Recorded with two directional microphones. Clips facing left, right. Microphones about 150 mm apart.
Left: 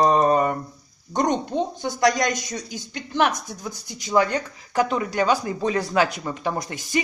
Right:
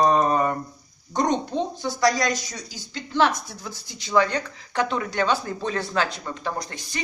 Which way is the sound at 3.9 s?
45° left (ahead or behind).